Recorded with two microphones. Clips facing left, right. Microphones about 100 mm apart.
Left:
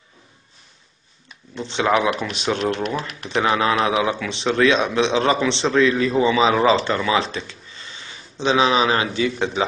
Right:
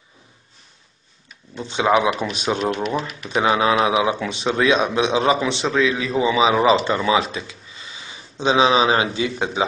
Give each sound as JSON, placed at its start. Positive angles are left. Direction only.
{"t": 1.6, "sound": "speech", "side_deg": -15}
{"t": 2.6, "sound": "speech", "side_deg": 0}
{"t": 7.2, "sound": "a sound", "side_deg": -10}
{"t": 8.4, "sound": "speech", "side_deg": -20}